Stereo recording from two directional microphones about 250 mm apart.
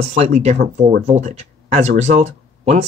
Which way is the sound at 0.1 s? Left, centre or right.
Right.